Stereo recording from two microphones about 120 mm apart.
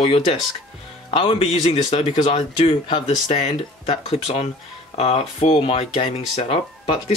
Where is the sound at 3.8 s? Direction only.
55° left (ahead or behind).